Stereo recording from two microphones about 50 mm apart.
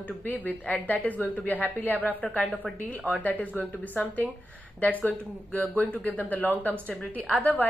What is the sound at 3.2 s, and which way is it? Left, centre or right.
A woman's voice, left.